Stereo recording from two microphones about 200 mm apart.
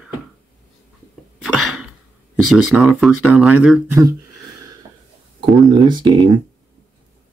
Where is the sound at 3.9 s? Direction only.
15° right (ahead or behind).